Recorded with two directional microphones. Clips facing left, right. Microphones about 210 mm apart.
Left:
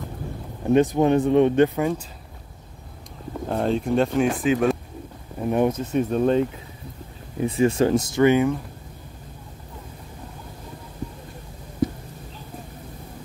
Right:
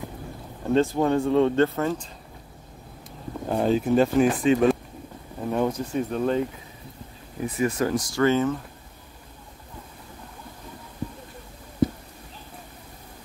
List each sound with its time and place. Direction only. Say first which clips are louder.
0.7 s speech: left 3 dB; 15° left (ahead or behind)
3.4 s speech: right 1 dB; centre (ahead or behind)
5.5 s speech: left 4 dB; 20° left (ahead or behind)
7.4 s speech: left 5 dB; 25° left (ahead or behind)